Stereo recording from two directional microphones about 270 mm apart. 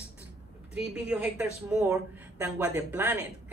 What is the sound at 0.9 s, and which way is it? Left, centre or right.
A woman's voice, centre.